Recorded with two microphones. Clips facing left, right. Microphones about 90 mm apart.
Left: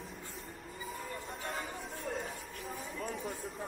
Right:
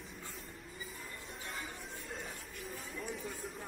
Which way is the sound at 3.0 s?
40° left (ahead or behind).